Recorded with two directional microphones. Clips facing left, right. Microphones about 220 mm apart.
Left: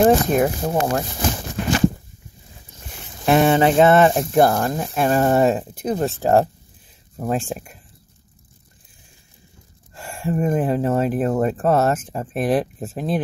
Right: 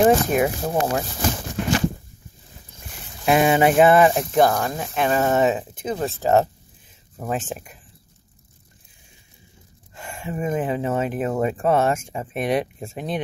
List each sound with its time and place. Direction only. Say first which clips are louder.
0.0 s speech: left 2 dB; 5° right (ahead or behind)
3.3 s speech: left 2 dB; 5° right (ahead or behind)
4.3 s speech: left 2 dB; 5° left (ahead or behind)
7.2 s speech: left 4 dB; 5° right (ahead or behind)
10.1 s speech: left 4 dB; 5° right (ahead or behind)